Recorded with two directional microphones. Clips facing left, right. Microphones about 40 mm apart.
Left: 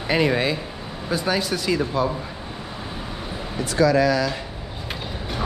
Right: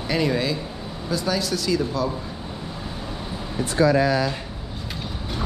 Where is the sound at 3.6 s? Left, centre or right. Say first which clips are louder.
Even; right.